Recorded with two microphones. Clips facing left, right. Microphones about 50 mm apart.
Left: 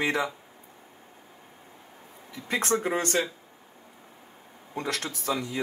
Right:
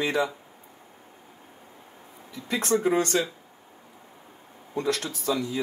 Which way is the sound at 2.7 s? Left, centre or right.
Left.